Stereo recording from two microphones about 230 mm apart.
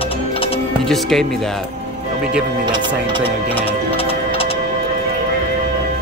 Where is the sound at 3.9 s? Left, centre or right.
Left.